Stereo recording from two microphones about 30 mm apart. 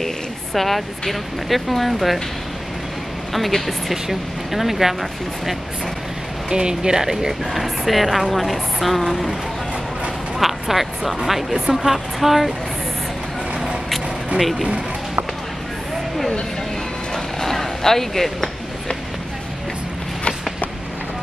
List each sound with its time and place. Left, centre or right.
0.6 s a woman's voice: centre
3.3 s a woman's voice: centre
6.5 s speech: right
7.6 s a woman's voice: centre
10.4 s speech: centre
17.1 s a sound: centre